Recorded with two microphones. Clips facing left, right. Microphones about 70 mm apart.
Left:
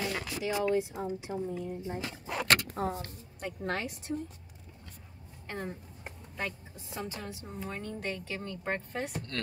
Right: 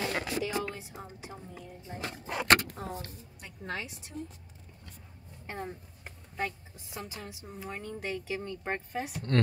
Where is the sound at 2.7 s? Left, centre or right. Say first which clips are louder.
Left 6 dB; left.